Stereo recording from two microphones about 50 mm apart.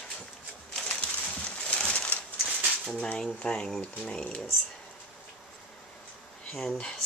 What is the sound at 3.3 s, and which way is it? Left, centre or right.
Speech, centre.